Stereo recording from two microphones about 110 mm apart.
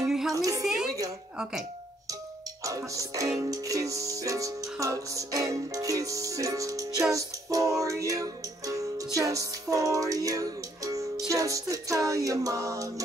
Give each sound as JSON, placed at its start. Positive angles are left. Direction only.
{"t": 0.3, "sound": "music", "side_deg": -30}
{"t": 2.6, "sound": "music", "side_deg": -30}